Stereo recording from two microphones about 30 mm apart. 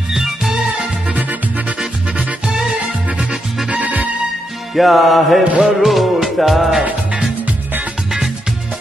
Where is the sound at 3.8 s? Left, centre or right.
Right.